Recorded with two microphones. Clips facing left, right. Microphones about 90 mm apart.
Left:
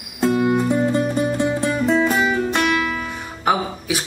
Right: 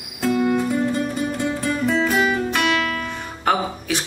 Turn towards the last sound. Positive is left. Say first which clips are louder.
# even
turn(degrees=10)  # may be behind; listen again after turning